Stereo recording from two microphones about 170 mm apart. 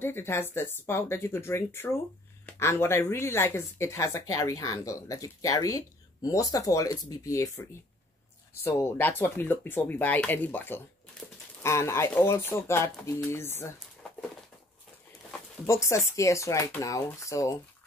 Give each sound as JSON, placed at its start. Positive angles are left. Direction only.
{"t": 0.0, "sound": "speech", "side_deg": 15}
{"t": 8.6, "sound": "speech", "side_deg": 15}
{"t": 15.6, "sound": "speech", "side_deg": 15}